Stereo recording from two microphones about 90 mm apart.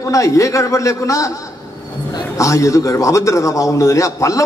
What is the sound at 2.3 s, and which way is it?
A man's voice, 35° left (ahead or behind).